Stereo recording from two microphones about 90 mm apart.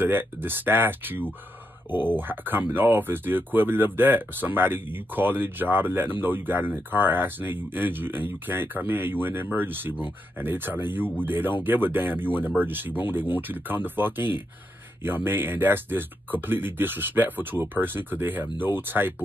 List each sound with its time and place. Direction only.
0.0 s speech: 25° right (ahead or behind)